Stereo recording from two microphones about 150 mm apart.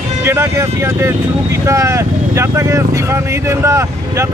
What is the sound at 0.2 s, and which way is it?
Speech, 20° right (ahead or behind).